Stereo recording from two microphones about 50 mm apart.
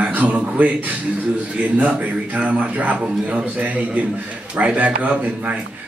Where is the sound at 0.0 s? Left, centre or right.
Right.